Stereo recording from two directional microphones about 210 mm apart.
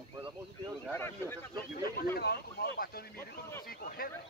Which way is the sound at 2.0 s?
50° left (ahead or behind).